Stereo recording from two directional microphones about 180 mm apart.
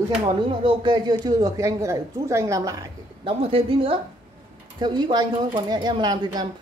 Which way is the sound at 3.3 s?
30° right (ahead or behind).